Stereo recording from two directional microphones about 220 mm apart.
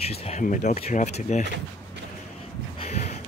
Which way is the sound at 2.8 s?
30° left (ahead or behind).